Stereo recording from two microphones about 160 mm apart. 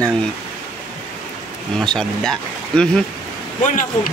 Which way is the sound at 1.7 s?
5° left (ahead or behind).